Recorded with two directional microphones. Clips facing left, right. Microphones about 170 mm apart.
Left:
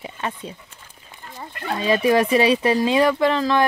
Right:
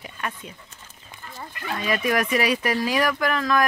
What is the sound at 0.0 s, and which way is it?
Speech, 30° left (ahead or behind).